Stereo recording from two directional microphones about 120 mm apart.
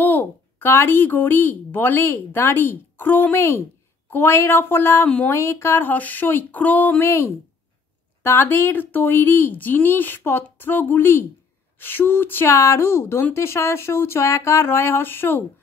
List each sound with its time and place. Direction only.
0.0 s a woman's voice: 15° left (ahead or behind)